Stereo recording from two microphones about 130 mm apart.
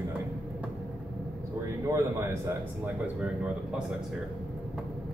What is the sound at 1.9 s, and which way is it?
Speech, 20° right (ahead or behind).